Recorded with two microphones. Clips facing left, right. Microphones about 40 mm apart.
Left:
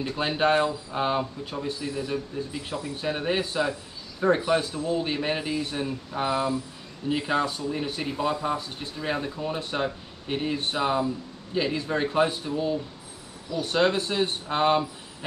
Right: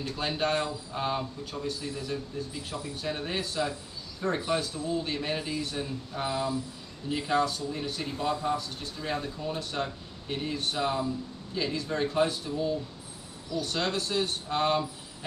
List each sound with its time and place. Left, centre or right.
0.0 s speech: left